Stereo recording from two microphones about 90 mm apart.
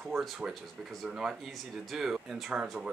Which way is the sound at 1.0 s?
5° right (ahead or behind).